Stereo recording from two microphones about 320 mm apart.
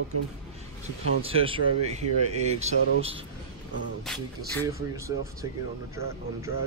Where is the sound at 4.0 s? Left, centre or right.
Centre.